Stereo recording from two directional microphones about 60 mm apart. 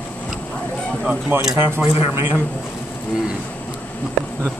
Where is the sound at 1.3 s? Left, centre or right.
Right.